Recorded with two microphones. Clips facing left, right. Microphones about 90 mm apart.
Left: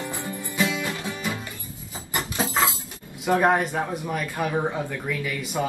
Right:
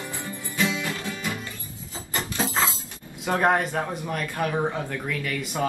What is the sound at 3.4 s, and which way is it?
A man's voice, 5° left (ahead or behind).